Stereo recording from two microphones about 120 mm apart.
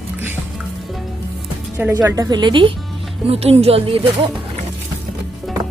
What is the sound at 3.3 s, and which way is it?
Speech, 55° right (ahead or behind).